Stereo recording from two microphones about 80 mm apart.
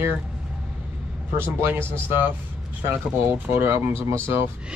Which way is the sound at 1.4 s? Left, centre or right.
Right.